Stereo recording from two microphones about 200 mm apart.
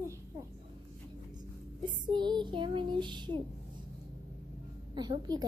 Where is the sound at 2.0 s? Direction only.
20° right (ahead or behind).